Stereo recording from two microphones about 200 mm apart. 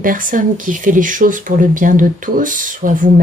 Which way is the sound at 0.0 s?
45° right (ahead or behind).